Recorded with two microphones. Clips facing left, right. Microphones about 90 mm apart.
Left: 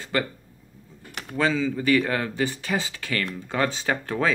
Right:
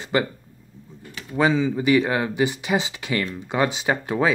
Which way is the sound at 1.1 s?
65° left (ahead or behind).